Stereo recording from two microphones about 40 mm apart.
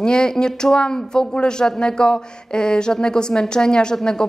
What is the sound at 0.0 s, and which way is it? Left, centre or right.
Speech, left.